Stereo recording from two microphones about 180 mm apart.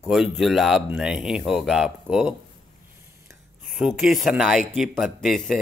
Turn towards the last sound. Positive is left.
turn(degrees=0)  # may be behind; listen again after turning